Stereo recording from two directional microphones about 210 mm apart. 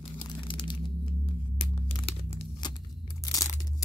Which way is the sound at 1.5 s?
20° left (ahead or behind).